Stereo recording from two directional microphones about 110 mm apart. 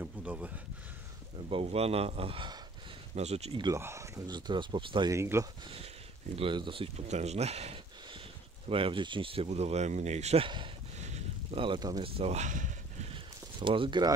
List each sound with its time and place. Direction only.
0.0 s a sound: 15° right (ahead or behind)
1.5 s speech: 65° right (ahead or behind)
3.2 s speech: 80° right
3.7 s speech: 25° right (ahead or behind)
4.3 s speech: 45° right (ahead or behind)
5.1 s speech: 25° right (ahead or behind)
6.3 s speech: 50° right (ahead or behind)
7.1 s speech: 85° right
8.6 s speech: 55° right (ahead or behind); by 10.4 s 85° right
10.4 s speech: 50° right (ahead or behind)
11.0 s a sound: 90° right
11.5 s speech: 50° right (ahead or behind)
12.0 s speech: 70° right (ahead or behind)
13.1 s a sound: 50° right (ahead or behind)